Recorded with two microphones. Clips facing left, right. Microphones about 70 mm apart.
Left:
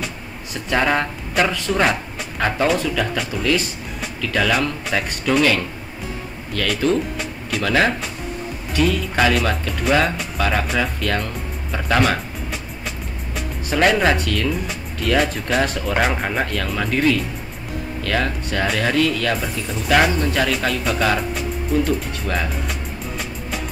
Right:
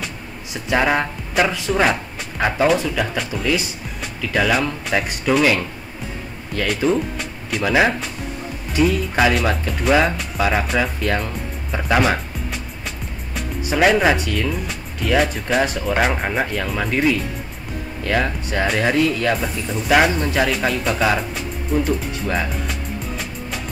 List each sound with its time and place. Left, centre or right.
0.7 s speech: centre
13.7 s speech: centre
19.3 s speech: centre